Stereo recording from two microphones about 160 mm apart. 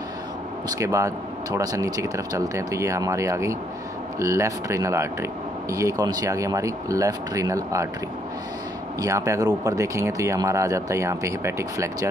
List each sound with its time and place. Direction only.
0.7 s speech: 20° right (ahead or behind)
9.0 s speech: 20° right (ahead or behind)